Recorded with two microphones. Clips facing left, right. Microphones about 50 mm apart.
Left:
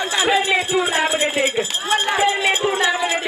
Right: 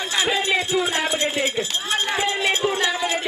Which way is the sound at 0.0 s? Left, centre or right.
Centre.